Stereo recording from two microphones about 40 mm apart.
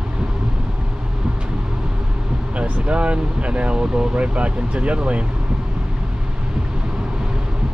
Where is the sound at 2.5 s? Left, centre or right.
Right.